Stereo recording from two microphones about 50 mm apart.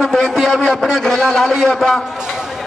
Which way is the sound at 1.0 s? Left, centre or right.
Centre.